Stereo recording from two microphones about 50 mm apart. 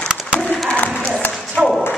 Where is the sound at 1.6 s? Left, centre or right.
Centre.